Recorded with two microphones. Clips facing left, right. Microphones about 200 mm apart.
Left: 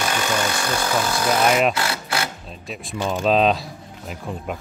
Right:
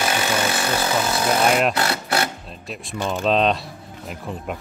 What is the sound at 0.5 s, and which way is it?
Wood, 25° right (ahead or behind).